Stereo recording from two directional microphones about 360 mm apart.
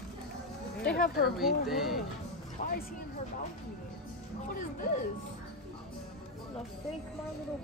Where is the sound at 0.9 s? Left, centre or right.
Left.